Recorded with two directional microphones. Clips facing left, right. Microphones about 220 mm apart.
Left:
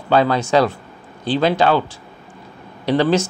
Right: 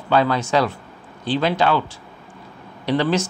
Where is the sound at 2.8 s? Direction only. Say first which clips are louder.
Left 3 dB; 35° left (ahead or behind).